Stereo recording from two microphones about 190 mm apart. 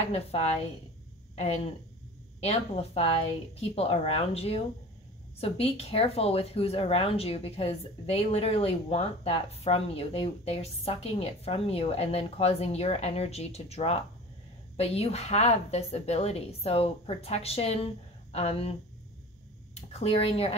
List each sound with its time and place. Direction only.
0.1 s speech: 35° left (ahead or behind)